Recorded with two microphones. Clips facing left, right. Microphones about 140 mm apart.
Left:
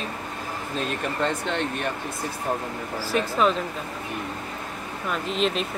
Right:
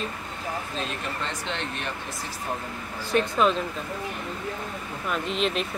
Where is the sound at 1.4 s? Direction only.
50° left (ahead or behind).